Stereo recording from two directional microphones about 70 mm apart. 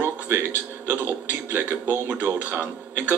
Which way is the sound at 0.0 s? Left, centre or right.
Right.